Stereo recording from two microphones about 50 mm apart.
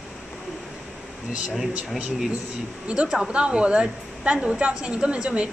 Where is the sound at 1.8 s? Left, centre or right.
Centre.